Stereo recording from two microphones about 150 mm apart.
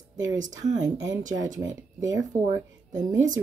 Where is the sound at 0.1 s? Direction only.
25° right (ahead or behind).